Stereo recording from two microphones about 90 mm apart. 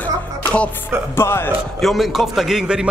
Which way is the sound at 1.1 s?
25° left (ahead or behind).